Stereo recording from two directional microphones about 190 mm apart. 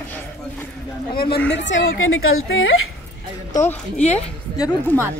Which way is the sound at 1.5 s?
80° left.